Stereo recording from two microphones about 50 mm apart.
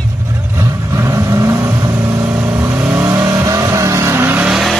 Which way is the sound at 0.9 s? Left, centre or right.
Right.